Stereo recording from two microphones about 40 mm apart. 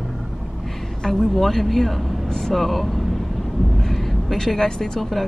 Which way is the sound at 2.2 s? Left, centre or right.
Centre.